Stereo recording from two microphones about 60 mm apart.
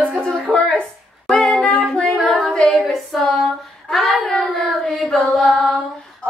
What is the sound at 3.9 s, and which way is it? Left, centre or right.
Child singing, centre.